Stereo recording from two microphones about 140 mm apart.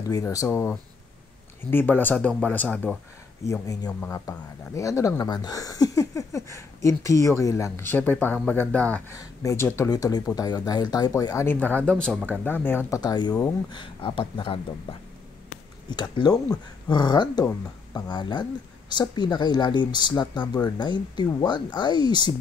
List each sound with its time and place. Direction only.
0.1 s speech: 25° left (ahead or behind)
3.4 s speech: 20° left (ahead or behind)
9.1 s speech: 20° left (ahead or behind)
11.4 s speech: 10° left (ahead or behind)
13.0 s speech: 30° left (ahead or behind)